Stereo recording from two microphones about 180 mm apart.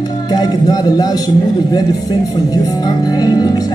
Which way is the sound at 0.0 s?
20° left (ahead or behind).